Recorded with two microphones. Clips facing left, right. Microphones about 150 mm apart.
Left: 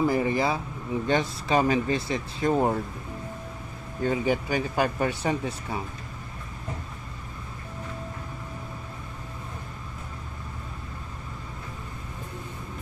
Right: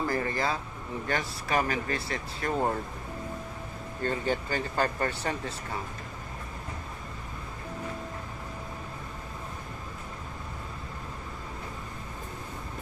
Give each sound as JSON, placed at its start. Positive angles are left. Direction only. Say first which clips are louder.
{"t": 0.0, "sound": "speech", "louder": "left 6 dB", "side_deg": 15}
{"t": 4.0, "sound": "speech", "louder": "left 4 dB", "side_deg": 10}